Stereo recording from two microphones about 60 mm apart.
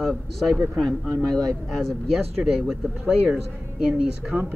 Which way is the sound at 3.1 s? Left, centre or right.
Centre.